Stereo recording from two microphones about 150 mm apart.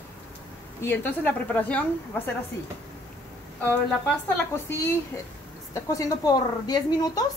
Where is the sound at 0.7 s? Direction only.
15° left (ahead or behind).